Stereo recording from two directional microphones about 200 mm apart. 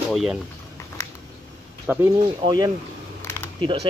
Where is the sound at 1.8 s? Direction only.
15° right (ahead or behind).